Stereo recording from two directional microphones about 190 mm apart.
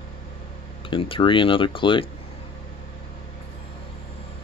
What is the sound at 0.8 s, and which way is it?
Speech, 25° left (ahead or behind).